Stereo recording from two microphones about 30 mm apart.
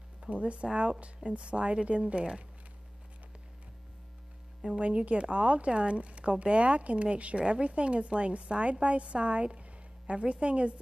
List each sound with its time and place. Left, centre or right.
0.3 s speech: right
4.6 s speech: right